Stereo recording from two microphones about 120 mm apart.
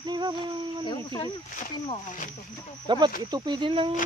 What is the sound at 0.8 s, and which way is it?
Speech, 30° left (ahead or behind).